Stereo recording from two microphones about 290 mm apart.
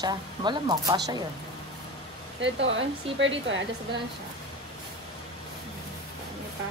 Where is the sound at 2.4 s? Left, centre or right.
Right.